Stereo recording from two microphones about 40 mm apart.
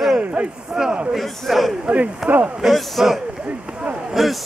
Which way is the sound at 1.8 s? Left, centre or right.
Right.